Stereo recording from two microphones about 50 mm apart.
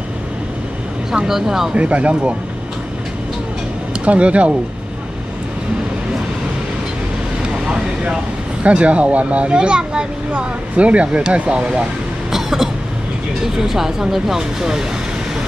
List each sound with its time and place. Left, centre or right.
1.1 s speech: centre
1.7 s speech: right
4.0 s speech: right
7.4 s vehicle: centre
8.6 s speech: right
12.3 s cough: centre
13.6 s speech: centre